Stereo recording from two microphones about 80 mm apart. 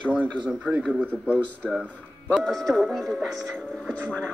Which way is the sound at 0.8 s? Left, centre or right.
Centre.